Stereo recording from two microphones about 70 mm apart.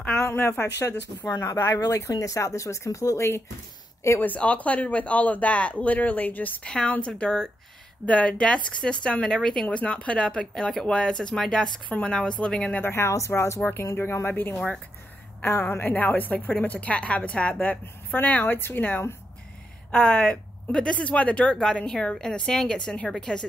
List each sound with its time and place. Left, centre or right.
0.2 s speech: left
1.2 s speech: left
1.8 s speech: left
4.2 s a woman's voice: left
6.6 s speech: centre
11.9 s speech: centre
12.7 s speech: left
15.9 s a woman's voice: left
20.2 s speech: centre